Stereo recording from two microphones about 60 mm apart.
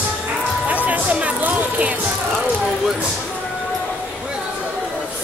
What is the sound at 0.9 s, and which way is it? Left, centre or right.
Music, right.